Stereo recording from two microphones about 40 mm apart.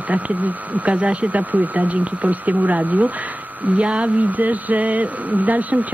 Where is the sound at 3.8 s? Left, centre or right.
Right.